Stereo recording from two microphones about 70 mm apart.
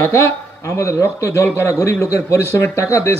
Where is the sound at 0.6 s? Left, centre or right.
Left.